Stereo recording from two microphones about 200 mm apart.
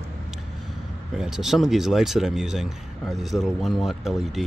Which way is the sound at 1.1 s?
Centre (ahead or behind).